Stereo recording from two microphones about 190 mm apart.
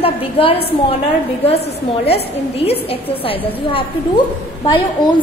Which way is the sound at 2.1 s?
30° left (ahead or behind).